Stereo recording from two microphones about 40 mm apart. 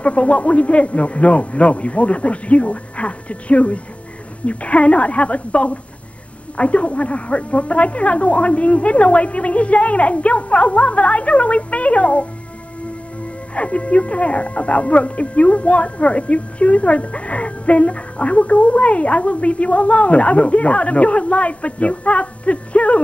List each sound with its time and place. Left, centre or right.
0.0 s speech: left
13.6 s speech: left